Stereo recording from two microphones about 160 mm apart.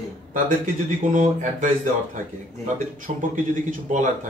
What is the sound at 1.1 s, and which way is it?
Speech, 55° right (ahead or behind).